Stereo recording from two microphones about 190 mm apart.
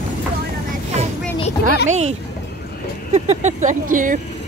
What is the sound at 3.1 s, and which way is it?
Speech, 35° right (ahead or behind).